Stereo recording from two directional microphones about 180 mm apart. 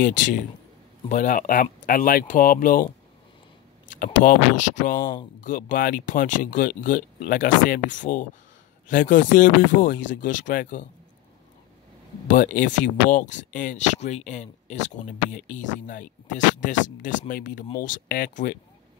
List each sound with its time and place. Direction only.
0.0 s speech: 45° left (ahead or behind)
3.9 s speech: 45° left (ahead or behind)
12.3 s speech: 45° left (ahead or behind)